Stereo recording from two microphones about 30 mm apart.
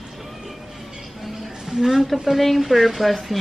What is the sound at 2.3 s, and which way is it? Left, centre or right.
Speech, centre.